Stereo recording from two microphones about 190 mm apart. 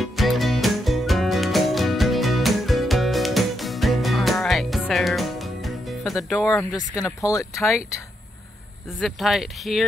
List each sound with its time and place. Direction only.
0.0 s music: centre (ahead or behind)
6.2 s speech: centre (ahead or behind)
7.0 s speech: 15° left (ahead or behind)
9.0 s speech: centre (ahead or behind)